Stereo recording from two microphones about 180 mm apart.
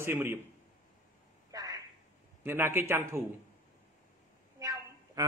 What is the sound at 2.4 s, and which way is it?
Speech, 10° right (ahead or behind).